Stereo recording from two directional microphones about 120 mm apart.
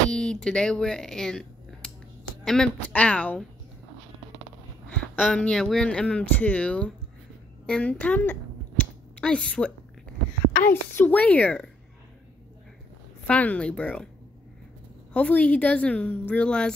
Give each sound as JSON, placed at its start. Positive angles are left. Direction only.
{"t": 0.1, "sound": "speech", "side_deg": 5}
{"t": 4.9, "sound": "speech", "side_deg": 10}
{"t": 13.3, "sound": "speech", "side_deg": 10}
{"t": 15.1, "sound": "speech", "side_deg": 10}